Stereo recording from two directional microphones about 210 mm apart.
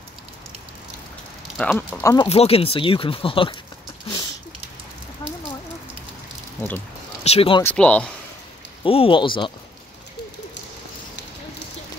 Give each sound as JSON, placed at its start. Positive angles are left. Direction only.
{"t": 1.6, "sound": "speech", "side_deg": 5}
{"t": 2.1, "sound": "speech", "side_deg": 30}
{"t": 7.2, "sound": "speech", "side_deg": 25}
{"t": 7.6, "sound": "speech", "side_deg": 5}
{"t": 8.8, "sound": "speech", "side_deg": 25}